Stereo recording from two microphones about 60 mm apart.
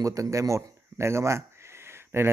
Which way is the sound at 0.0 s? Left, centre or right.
Right.